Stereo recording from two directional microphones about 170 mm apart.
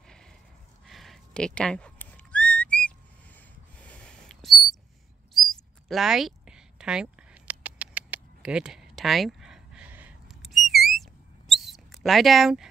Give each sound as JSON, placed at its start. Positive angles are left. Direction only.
{"t": 0.8, "sound": "whistling", "side_deg": 0}
{"t": 3.3, "sound": "a sound", "side_deg": 10}
{"t": 5.3, "sound": "mouse", "side_deg": 0}